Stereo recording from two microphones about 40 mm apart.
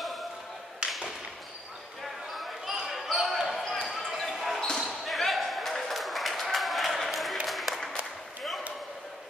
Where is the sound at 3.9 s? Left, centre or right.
Centre.